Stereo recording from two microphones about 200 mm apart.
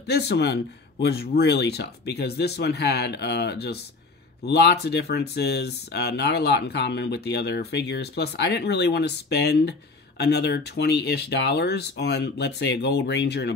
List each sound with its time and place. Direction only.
0.0 s speech: 55° left (ahead or behind)